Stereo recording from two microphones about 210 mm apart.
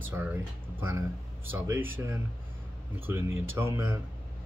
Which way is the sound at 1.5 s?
10° right (ahead or behind).